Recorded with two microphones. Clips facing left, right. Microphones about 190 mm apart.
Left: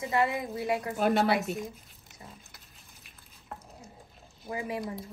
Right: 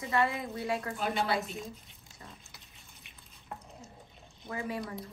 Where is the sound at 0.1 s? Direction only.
20° left (ahead or behind).